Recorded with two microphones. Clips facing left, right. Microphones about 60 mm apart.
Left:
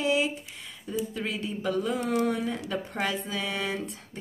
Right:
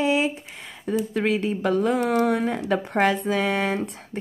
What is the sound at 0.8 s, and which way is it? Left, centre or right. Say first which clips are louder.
Speech: right 8 dB; right.